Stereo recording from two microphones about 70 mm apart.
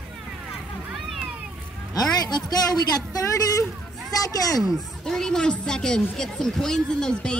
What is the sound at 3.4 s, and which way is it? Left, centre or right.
Speech, left.